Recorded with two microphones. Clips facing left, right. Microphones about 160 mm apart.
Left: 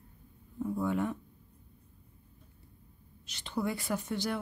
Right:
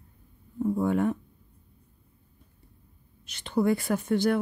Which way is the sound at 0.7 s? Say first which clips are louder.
Right 6 dB; 50° right (ahead or behind).